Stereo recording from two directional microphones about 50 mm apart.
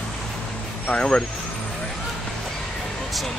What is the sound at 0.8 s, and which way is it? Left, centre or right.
Speech, centre.